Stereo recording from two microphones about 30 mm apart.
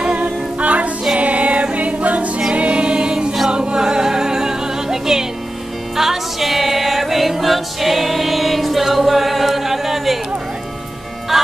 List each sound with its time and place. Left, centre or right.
0.1 s a capella: right
2.5 s music: right; by 10.1 s centre
11.3 s music: centre